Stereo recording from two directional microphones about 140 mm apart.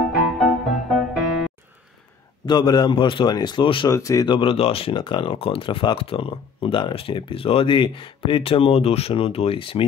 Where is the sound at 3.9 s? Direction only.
25° left (ahead or behind).